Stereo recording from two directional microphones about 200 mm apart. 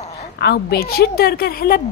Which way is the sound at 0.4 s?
55° left (ahead or behind).